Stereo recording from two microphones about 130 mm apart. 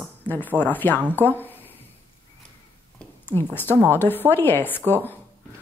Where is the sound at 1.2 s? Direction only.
15° left (ahead or behind).